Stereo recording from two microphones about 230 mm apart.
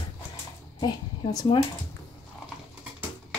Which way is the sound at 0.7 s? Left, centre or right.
Centre.